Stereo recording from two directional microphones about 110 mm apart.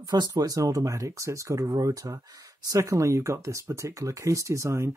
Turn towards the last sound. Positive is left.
turn(degrees=-25)  # may be behind; listen again after turning